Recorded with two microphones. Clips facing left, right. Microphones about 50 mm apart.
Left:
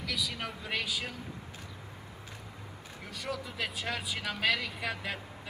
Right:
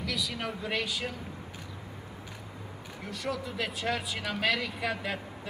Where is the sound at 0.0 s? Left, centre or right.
Centre.